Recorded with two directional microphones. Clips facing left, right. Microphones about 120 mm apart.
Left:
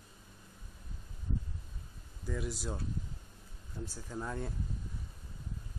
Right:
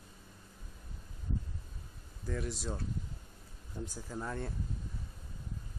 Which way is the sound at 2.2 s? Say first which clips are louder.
Even; 5° left (ahead or behind).